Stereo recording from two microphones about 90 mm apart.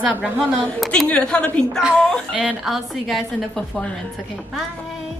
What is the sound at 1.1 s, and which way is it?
Speech, 10° left (ahead or behind).